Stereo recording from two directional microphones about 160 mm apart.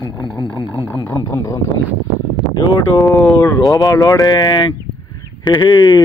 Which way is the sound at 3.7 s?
20° left (ahead or behind).